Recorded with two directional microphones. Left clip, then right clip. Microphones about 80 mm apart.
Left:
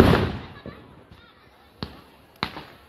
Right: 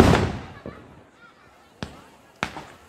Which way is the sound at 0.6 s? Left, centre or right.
Right.